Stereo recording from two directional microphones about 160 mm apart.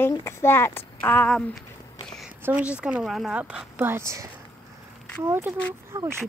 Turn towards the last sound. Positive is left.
turn(degrees=-15)  # may be behind; listen again after turning